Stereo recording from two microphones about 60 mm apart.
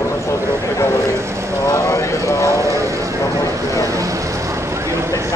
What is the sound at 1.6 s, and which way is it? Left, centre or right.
Vehicle, left.